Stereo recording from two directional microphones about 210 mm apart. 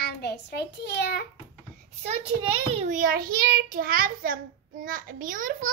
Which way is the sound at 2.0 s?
25° right (ahead or behind).